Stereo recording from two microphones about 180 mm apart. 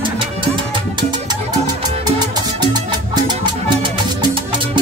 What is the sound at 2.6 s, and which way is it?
Salsa music, 25° right (ahead or behind).